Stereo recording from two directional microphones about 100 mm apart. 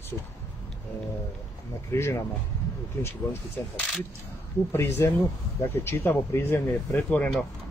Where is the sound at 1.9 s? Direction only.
25° left (ahead or behind).